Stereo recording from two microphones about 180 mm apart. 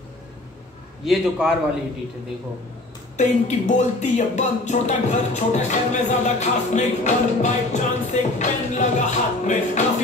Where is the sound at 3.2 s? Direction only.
40° left (ahead or behind).